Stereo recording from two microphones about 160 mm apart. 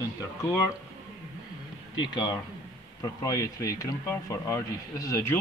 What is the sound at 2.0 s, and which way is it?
Speech, 30° left (ahead or behind).